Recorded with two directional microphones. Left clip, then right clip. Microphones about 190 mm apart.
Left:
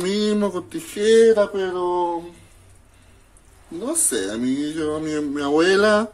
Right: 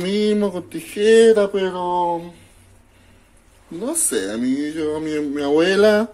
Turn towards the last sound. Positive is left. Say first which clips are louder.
# right 2 dB
turn(degrees=-5)  # may be behind; listen again after turning